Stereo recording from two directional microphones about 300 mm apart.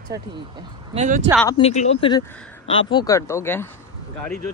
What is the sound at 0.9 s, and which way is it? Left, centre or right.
Speech, right.